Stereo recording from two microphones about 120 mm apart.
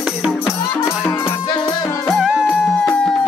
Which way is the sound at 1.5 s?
35° left (ahead or behind).